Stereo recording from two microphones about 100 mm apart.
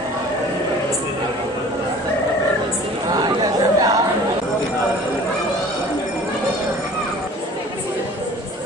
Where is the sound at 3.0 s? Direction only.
40° right (ahead or behind).